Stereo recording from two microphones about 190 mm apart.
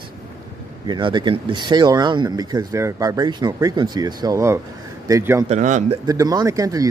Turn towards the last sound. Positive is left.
turn(degrees=-20)  # may be behind; listen again after turning